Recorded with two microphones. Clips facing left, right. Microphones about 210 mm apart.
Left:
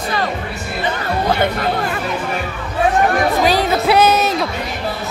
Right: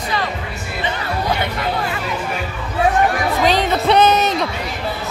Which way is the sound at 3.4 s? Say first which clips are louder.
Right 3 dB; 5° left (ahead or behind).